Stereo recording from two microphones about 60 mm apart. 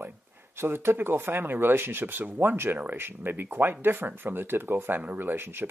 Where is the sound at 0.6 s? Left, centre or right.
Right.